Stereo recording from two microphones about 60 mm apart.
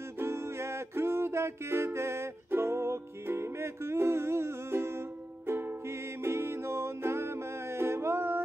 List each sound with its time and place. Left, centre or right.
0.2 s music: right